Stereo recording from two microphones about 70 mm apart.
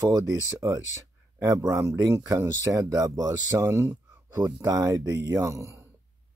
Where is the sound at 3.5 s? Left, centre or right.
Right.